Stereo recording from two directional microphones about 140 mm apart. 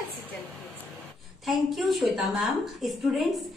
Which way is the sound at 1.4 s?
Centre (ahead or behind).